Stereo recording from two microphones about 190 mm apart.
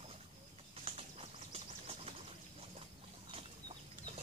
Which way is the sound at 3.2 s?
30° right (ahead or behind).